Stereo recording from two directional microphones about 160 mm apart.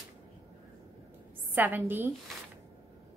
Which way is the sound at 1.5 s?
10° right (ahead or behind).